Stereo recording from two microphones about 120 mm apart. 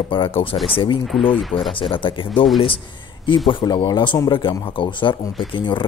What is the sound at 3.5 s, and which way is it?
A man's voice, 40° left (ahead or behind).